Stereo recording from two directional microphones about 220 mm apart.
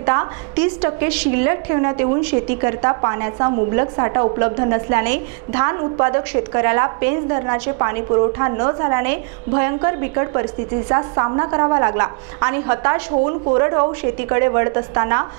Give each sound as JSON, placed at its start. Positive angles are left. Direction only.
{"t": 0.0, "sound": "a woman's voice", "side_deg": -20}